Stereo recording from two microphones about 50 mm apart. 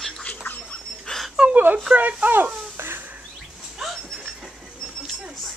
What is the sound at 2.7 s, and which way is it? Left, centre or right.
Bird, right.